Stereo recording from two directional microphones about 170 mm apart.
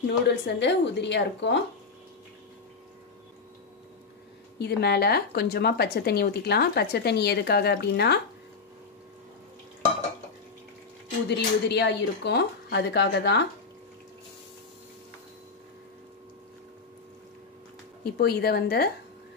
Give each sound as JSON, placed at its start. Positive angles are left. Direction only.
{"t": 0.0, "sound": "speech", "side_deg": 90}
{"t": 4.6, "sound": "a woman's voice", "side_deg": 75}
{"t": 11.2, "sound": "speech", "side_deg": 85}
{"t": 18.0, "sound": "a woman's voice", "side_deg": 70}